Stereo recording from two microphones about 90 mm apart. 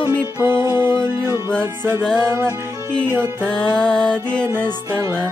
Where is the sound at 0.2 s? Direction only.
30° right (ahead or behind).